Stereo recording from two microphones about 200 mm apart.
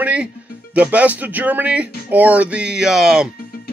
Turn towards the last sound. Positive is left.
turn(degrees=-5)  # may be behind; listen again after turning